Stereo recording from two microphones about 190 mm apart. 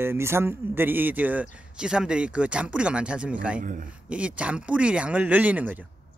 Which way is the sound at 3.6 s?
45° right (ahead or behind).